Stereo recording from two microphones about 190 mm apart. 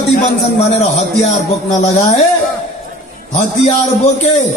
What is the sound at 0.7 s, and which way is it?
A man's voice, 35° left (ahead or behind).